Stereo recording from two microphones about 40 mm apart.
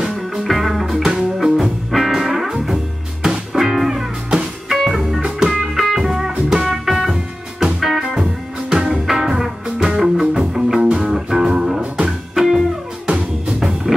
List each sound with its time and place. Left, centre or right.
0.4 s music: centre
12.4 s music: centre
13.0 s music: right